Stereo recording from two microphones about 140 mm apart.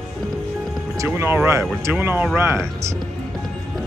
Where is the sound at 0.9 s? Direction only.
20° right (ahead or behind).